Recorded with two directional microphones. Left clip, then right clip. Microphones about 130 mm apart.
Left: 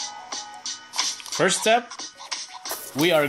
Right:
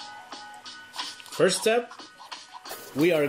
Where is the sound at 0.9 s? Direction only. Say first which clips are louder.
Left 4 dB; 35° left (ahead or behind).